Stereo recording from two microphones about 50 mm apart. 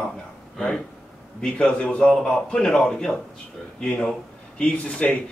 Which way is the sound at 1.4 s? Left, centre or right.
Centre.